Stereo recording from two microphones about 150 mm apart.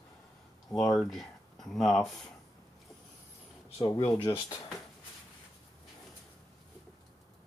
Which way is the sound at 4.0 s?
10° left (ahead or behind).